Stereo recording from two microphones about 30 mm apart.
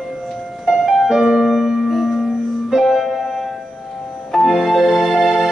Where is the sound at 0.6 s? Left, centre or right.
Right.